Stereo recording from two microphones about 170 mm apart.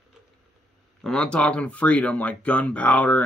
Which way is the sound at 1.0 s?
5° left (ahead or behind).